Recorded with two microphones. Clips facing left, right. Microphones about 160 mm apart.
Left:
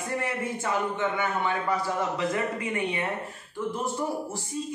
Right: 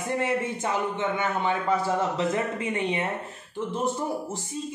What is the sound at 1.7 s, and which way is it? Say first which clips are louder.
A man's voice: right 3 dB; 25° right (ahead or behind).